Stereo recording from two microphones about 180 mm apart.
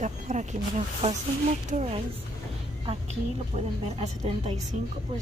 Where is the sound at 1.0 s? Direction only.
30° right (ahead or behind).